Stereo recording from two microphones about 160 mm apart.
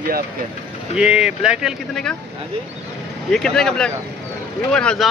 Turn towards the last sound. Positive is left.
turn(degrees=5)  # may be behind; listen again after turning